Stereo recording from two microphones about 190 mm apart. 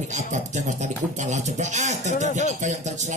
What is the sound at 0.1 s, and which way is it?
A man's voice, 40° right (ahead or behind).